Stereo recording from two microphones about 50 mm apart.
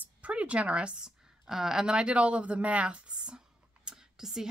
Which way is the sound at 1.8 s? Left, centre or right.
Right.